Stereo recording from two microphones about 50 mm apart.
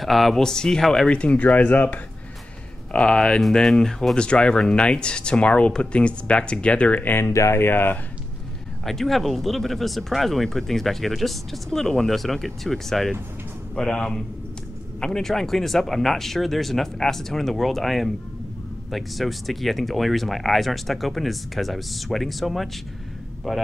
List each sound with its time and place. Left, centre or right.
0.0 s speech: centre
0.4 s speech: centre
1.1 s speech: left
2.9 s speech: centre
7.5 s speech: left
8.8 s speech: centre